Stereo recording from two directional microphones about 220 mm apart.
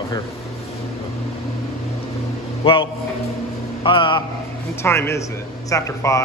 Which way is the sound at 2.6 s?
25° left (ahead or behind).